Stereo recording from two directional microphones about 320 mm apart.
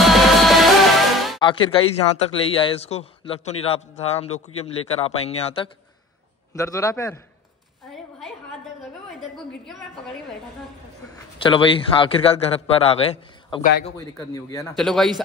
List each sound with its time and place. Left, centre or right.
0.1 s music: centre
1.4 s speech: centre
9.2 s a woman's voice: centre
11.3 s a man's voice: centre